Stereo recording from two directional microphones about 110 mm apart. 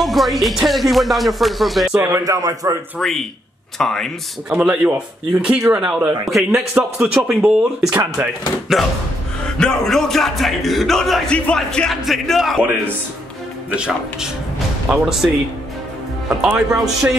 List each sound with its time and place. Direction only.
0.0 s speech: centre (ahead or behind)
2.0 s a man's voice: 30° right (ahead or behind)
3.0 s speech: centre (ahead or behind)
4.5 s speech: 10° right (ahead or behind)
13.7 s speech: 5° right (ahead or behind)
16.3 s speech: 10° right (ahead or behind)